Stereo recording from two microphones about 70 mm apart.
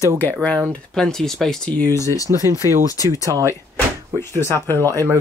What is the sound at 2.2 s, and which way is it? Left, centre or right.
Speech, right.